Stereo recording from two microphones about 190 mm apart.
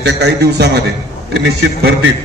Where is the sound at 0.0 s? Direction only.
60° right (ahead or behind).